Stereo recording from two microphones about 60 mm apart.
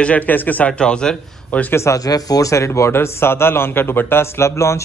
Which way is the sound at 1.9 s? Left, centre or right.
Left.